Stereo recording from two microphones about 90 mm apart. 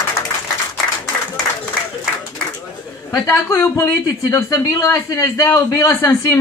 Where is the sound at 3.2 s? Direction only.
30° left (ahead or behind).